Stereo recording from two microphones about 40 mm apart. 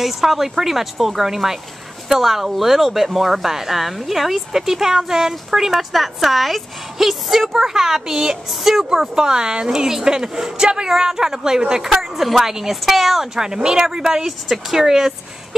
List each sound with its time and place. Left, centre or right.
0.0 s speech: centre
9.2 s speech: centre